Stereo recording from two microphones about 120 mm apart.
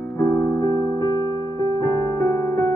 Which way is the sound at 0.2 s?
30° left (ahead or behind).